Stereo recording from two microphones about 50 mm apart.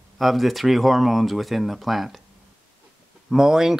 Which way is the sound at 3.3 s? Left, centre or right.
Centre.